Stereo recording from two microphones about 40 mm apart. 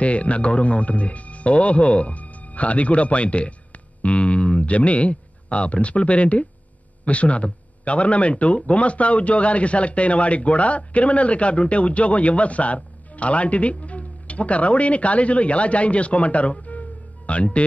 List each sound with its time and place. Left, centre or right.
0.0 s speech: left